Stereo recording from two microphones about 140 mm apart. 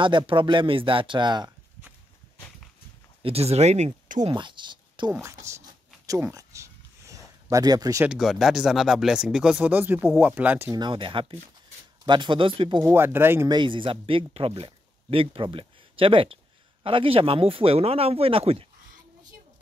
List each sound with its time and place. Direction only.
0.0 s speech: 35° right (ahead or behind)
3.2 s speech: 45° right (ahead or behind)
4.2 s speech: 35° right (ahead or behind)
5.2 s speech: 20° right (ahead or behind)
6.3 s a sound: 20° right (ahead or behind)
8.0 s speech: 5° right (ahead or behind)
10.7 s speech: 35° right (ahead or behind)
12.8 s speech: 15° right (ahead or behind)
13.5 s speech: 35° right (ahead or behind)